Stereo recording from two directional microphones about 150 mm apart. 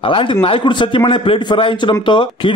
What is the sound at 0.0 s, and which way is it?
A man's voice, 35° left (ahead or behind).